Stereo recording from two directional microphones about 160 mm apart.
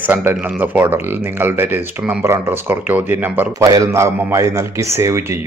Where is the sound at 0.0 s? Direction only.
10° right (ahead or behind).